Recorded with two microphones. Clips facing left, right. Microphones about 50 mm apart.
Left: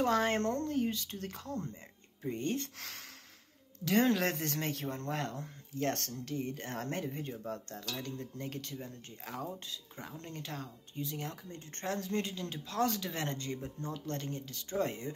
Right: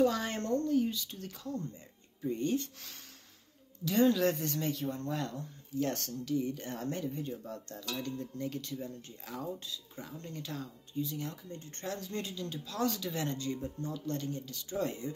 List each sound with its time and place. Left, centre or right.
0.0 s a sound: left
0.4 s speech: left
0.7 s speech: left
2.8 s speech: left
3.8 s speech: left
8.0 s a sound: left
8.8 s speech: left